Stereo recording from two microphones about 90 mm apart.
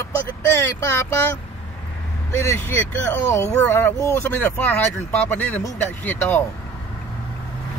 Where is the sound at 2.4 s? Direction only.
25° left (ahead or behind).